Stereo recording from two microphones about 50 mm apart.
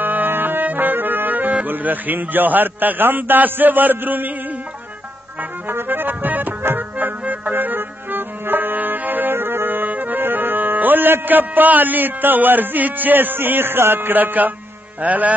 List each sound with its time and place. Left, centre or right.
0.0 s music: right
1.7 s a man's voice: right
5.4 s accordion: right
15.0 s a man's voice: right